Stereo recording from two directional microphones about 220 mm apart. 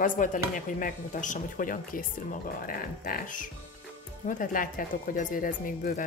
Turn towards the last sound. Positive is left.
turn(degrees=40)  # may be behind; listen again after turning